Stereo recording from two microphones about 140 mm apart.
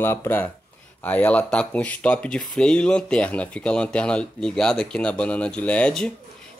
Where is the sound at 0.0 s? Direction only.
15° left (ahead or behind).